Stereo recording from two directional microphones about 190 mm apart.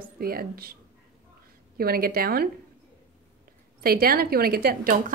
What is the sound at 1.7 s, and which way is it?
Speech, 50° right (ahead or behind).